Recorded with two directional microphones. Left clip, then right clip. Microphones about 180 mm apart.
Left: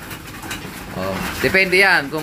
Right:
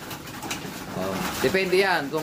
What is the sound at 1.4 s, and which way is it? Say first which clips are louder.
Speech: left 8 dB; centre (ahead or behind).